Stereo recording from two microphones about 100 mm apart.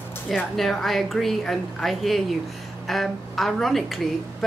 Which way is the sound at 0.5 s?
Centre (ahead or behind).